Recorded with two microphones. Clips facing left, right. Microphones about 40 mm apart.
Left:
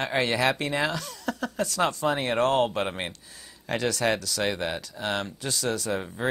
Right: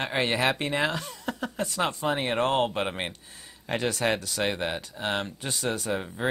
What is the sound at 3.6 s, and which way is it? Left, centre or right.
Speech, right.